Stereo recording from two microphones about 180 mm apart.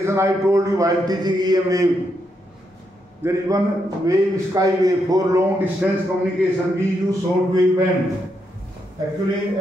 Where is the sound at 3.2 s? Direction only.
15° right (ahead or behind).